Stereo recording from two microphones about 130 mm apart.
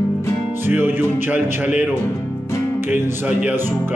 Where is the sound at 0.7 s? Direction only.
15° right (ahead or behind).